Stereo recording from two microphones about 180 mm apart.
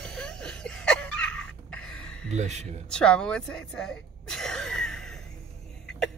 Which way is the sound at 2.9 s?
5° left (ahead or behind).